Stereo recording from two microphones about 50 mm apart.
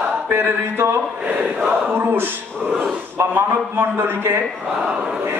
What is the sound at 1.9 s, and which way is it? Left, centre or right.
Speech, right.